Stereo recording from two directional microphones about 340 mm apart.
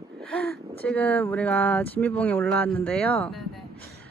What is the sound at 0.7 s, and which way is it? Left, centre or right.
Speech, centre.